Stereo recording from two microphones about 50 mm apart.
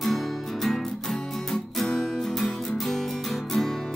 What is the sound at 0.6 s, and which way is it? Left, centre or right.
Music, centre.